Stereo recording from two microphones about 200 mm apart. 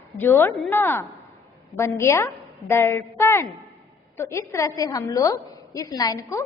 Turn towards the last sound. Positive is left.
turn(degrees=15)  # may be behind; listen again after turning